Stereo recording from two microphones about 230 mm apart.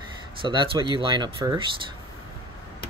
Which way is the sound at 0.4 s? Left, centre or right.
Right.